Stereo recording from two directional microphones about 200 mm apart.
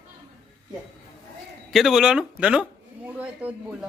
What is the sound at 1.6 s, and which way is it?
A man's voice, centre (ahead or behind).